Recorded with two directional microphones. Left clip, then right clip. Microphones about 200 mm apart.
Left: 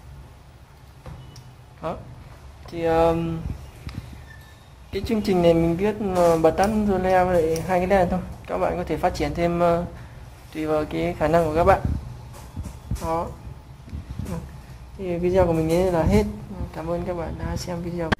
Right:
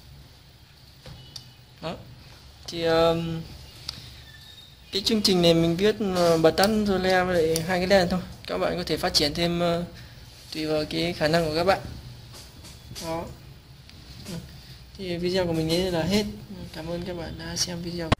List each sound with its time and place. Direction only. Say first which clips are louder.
2.6 s speech: left 2 dB; 50° right (ahead or behind)
4.9 s speech: even; 45° right (ahead or behind)
10.5 s speech: left 3 dB; 35° right (ahead or behind)
15.0 s speech: left 6 dB; 35° right (ahead or behind)